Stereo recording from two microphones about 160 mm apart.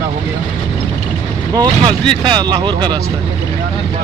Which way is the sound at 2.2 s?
30° right (ahead or behind).